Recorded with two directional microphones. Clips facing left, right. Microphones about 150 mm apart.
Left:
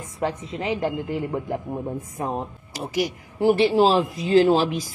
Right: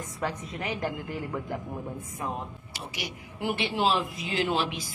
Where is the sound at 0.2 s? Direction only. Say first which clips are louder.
Left 7 dB; 25° left (ahead or behind).